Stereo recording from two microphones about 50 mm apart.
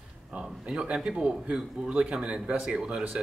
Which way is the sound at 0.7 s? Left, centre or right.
Centre.